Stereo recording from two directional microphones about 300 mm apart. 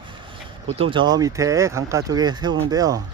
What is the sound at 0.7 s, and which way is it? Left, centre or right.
Speech, centre.